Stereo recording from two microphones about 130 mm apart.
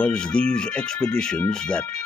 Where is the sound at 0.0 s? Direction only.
10° left (ahead or behind).